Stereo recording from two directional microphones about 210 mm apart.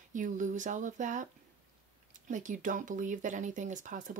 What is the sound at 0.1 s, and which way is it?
Speech, 35° right (ahead or behind).